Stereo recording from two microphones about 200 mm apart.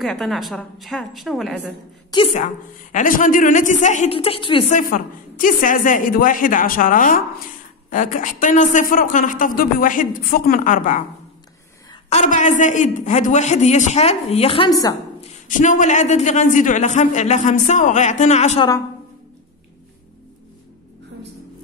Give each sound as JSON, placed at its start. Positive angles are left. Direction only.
{"t": 0.0, "sound": "a woman's voice", "side_deg": 0}
{"t": 2.3, "sound": "a woman's voice", "side_deg": 40}
{"t": 4.7, "sound": "a woman's voice", "side_deg": 45}
{"t": 12.1, "sound": "a woman's voice", "side_deg": 35}
{"t": 15.4, "sound": "a woman's voice", "side_deg": 40}